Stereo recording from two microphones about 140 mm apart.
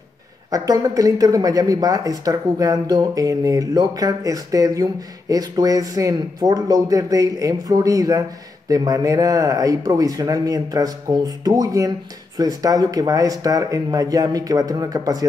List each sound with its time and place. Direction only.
0.5 s speech: 25° right (ahead or behind)